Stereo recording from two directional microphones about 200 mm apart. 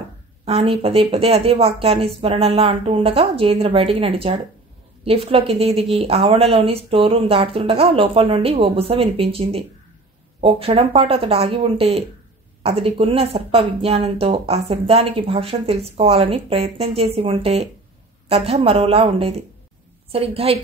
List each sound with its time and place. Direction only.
0.5 s a woman's voice: 30° right (ahead or behind)